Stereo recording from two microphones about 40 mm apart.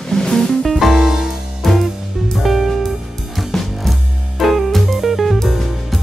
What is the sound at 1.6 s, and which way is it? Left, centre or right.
Music, centre.